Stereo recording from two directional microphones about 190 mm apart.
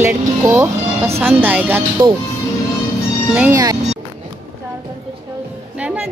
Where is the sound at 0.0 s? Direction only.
10° right (ahead or behind).